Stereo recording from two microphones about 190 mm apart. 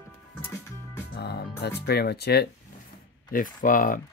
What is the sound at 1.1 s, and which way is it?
Music, 55° left (ahead or behind).